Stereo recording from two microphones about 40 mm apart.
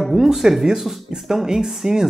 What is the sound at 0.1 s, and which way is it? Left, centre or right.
Speech, centre.